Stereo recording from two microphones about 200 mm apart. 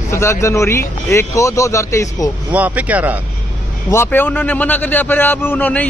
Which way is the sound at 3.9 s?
10° left (ahead or behind).